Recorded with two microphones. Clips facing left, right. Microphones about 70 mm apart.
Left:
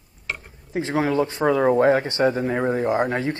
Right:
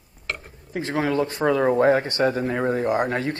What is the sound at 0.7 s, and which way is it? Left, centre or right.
A man's voice, left.